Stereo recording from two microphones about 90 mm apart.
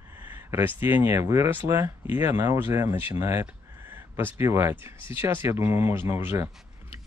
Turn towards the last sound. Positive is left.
turn(degrees=-30)  # may be behind; listen again after turning